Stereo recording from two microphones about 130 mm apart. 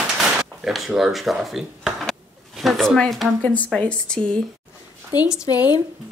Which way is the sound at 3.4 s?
10° left (ahead or behind).